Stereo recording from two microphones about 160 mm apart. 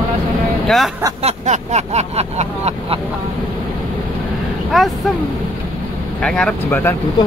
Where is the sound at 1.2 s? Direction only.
45° right (ahead or behind).